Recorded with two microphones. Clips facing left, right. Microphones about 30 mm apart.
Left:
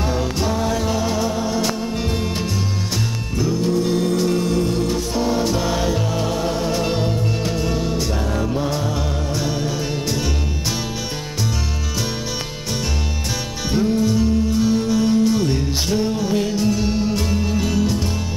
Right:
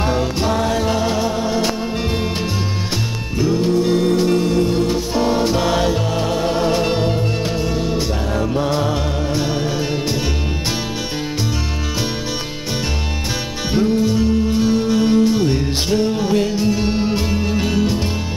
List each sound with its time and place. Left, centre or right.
0.0 s music: centre
3.3 s music: right
13.7 s music: centre